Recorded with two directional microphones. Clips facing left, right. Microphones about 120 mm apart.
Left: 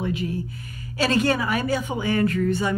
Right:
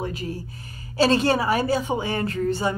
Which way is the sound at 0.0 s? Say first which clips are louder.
Left 3 dB; 35° right (ahead or behind).